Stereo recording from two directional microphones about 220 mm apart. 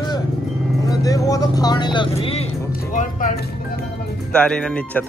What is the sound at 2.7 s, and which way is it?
Speech, 35° left (ahead or behind).